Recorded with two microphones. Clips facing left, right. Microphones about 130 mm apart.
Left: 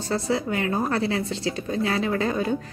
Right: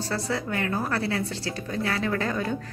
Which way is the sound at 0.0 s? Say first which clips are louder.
Left 4 dB; 20° left (ahead or behind).